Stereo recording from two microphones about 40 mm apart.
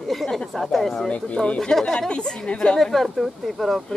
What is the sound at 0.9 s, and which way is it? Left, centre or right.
Speech, left.